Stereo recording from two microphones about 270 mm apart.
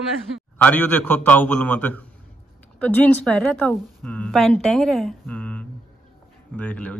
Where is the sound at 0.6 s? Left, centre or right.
Centre.